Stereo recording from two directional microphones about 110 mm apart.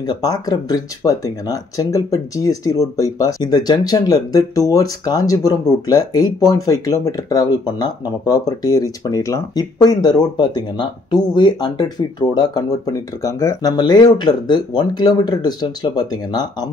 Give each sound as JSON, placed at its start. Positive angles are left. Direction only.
{"t": 0.0, "sound": "speech", "side_deg": 40}